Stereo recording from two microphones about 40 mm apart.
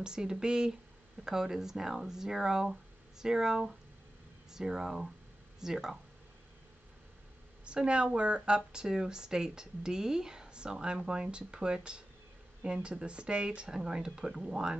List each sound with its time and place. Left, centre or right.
0.0 s a woman's voice: centre
7.6 s a woman's voice: right